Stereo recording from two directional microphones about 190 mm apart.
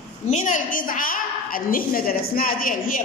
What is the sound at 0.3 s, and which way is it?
A woman's voice, 40° left (ahead or behind).